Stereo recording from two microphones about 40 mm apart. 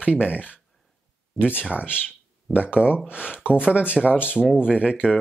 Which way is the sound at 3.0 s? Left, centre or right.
Right.